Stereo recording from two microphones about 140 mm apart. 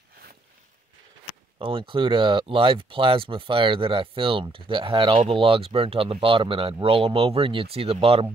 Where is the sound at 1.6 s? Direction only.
40° right (ahead or behind).